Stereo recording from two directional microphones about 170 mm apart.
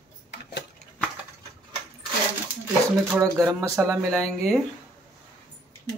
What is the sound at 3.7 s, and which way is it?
Speech, 15° right (ahead or behind).